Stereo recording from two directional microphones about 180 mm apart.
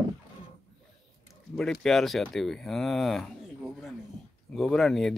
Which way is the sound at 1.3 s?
Centre (ahead or behind).